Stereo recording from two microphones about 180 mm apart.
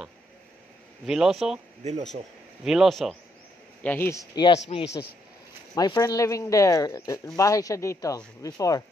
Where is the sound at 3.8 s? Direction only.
10° left (ahead or behind).